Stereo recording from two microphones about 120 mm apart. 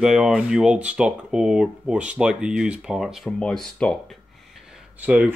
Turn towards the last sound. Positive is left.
turn(degrees=-10)  # may be behind; listen again after turning